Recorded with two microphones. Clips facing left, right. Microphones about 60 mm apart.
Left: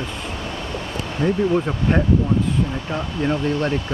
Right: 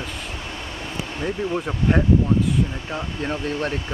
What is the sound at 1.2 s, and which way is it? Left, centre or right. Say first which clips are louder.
Speech: left 7 dB; centre.